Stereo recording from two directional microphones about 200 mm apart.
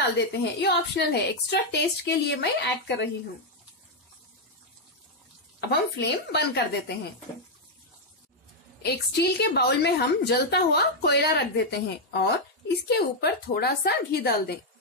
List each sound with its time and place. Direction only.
0.3 s a woman's voice: 55° left (ahead or behind)
5.6 s a woman's voice: 55° left (ahead or behind)
8.8 s a woman's voice: 55° left (ahead or behind)